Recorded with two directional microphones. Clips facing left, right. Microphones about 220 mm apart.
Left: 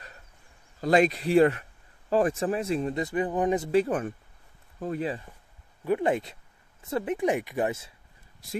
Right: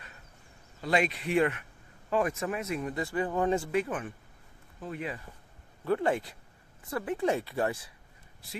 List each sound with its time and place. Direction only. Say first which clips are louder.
0.7 s speech: left 7 dB; 40° left (ahead or behind); by 3.7 s 20° left (ahead or behind)
3.7 s speech: left 6 dB; 40° left (ahead or behind)
5.9 s speech: left 3 dB; 20° left (ahead or behind)